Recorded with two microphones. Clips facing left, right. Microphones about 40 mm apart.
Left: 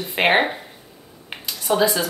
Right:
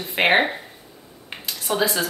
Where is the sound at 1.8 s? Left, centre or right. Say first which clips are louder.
Left 1 dB; centre.